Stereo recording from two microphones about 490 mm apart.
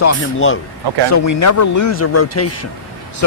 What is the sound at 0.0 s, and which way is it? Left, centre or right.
Speech, left.